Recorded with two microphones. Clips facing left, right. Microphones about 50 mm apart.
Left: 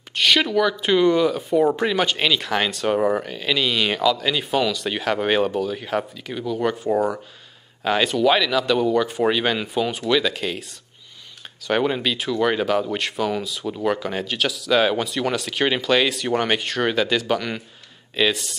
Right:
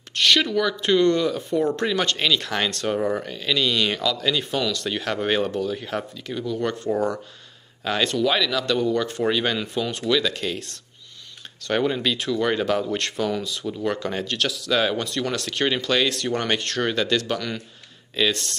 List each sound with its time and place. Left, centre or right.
0.1 s speech: centre